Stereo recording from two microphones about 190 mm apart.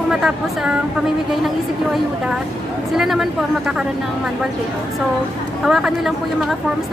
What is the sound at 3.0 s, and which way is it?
Speech, centre (ahead or behind).